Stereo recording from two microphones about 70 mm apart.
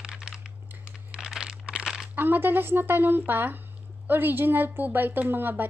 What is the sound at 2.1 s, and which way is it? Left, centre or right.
A woman's voice, right.